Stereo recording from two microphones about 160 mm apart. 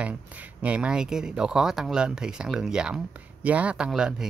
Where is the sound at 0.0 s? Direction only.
10° right (ahead or behind).